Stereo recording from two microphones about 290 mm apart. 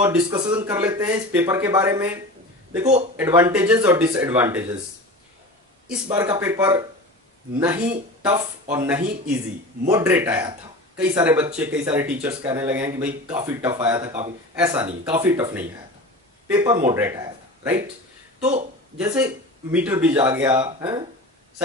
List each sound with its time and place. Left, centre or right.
0.0 s speech: centre
3.2 s speech: centre
6.0 s a man's voice: centre
18.4 s speech: right
18.9 s speech: centre